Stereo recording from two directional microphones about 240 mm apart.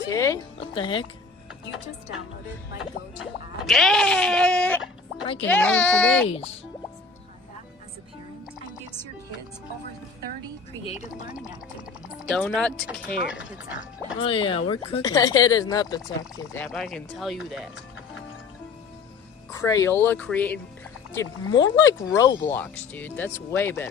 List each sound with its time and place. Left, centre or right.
0.1 s speech: centre
3.6 s speech: centre
6.2 s speech: left
12.3 s speech: centre
14.2 s speech: left
16.5 s speech: centre
19.5 s speech: centre